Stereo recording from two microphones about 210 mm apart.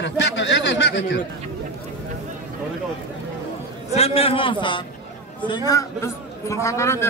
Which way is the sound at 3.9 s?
30° left (ahead or behind).